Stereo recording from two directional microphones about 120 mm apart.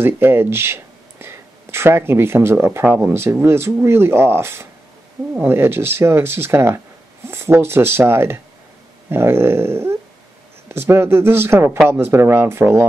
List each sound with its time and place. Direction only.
0.0 s speech: 20° right (ahead or behind)